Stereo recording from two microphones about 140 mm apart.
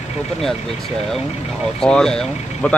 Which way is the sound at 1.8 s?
5° left (ahead or behind).